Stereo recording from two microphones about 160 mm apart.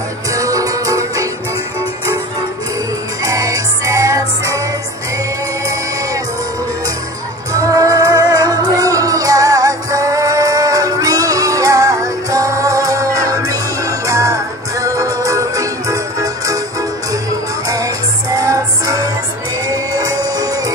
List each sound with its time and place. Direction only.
0.3 s music: 20° right (ahead or behind)
3.3 s music: 20° right (ahead or behind)
7.5 s music: 20° right (ahead or behind)
17.6 s music: 20° right (ahead or behind)